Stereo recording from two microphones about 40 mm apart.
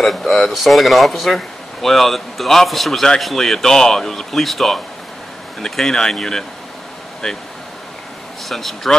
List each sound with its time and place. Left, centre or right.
0.0 s speech: centre
8.5 s speech: centre